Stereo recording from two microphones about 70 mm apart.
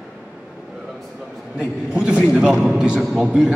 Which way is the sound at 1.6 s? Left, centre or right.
Centre.